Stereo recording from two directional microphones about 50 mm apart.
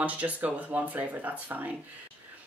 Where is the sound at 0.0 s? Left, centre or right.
Right.